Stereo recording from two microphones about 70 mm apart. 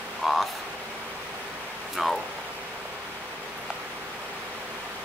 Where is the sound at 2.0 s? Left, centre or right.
Centre.